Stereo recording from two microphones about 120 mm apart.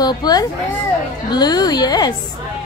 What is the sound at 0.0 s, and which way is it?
A woman's voice, 35° left (ahead or behind).